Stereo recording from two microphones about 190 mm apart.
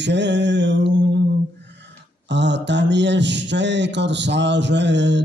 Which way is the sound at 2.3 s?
65° right (ahead or behind).